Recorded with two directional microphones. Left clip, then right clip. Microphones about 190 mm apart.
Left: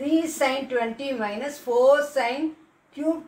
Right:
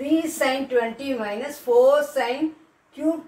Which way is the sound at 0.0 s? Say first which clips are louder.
Right 1 dB; 15° right (ahead or behind).